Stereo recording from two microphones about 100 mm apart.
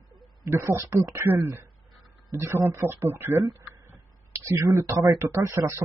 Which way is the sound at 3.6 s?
30° right (ahead or behind).